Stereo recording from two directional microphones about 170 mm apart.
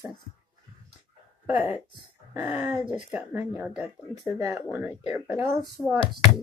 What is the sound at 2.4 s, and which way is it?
Speech, 5° right (ahead or behind).